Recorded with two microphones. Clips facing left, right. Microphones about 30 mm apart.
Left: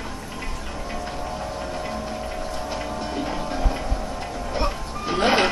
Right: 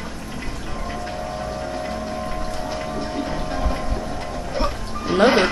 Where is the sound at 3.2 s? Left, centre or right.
Centre.